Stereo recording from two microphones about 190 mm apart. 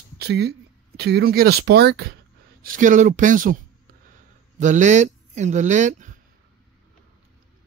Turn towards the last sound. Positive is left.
turn(degrees=-40)  # may be behind; listen again after turning